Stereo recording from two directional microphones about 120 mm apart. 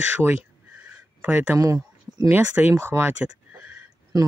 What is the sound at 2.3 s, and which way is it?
Speech, 15° right (ahead or behind).